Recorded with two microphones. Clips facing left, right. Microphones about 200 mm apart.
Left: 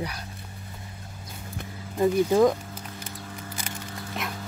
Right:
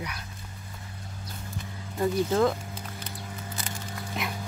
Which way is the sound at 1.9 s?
15° left (ahead or behind).